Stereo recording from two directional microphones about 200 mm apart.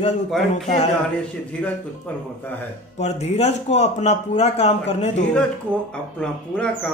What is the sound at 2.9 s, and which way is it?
Speech, 35° left (ahead or behind).